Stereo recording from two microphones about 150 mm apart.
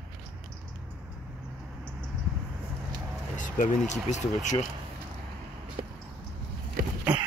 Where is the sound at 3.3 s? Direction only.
55° left (ahead or behind).